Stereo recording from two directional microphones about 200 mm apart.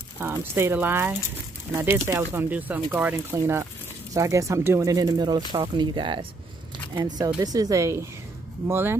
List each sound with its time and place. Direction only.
0.2 s speech: 10° right (ahead or behind)
7.3 s speech: 20° right (ahead or behind)